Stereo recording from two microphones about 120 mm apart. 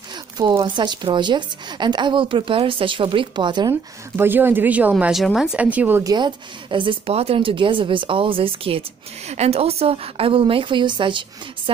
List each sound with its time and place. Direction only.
0.1 s speech: 40° right (ahead or behind)
4.2 s speech: 15° right (ahead or behind)
6.0 s speech: 40° right (ahead or behind)
9.3 s speech: 60° right (ahead or behind); by 11.7 s 45° right (ahead or behind)